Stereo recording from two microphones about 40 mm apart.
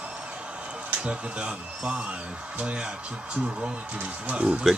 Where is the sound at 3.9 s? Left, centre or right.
Right.